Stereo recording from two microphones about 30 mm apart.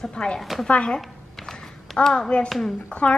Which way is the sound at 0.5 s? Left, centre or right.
Centre.